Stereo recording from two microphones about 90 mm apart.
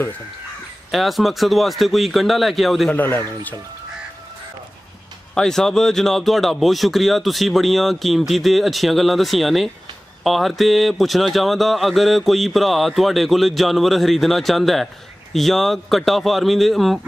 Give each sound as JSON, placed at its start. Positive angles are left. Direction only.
{"t": 0.9, "sound": "speech", "side_deg": 0}
{"t": 2.9, "sound": "a man's voice", "side_deg": 20}
{"t": 5.3, "sound": "speech", "side_deg": 5}